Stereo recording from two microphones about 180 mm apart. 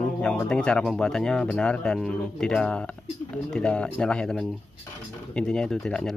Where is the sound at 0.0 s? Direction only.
5° left (ahead or behind).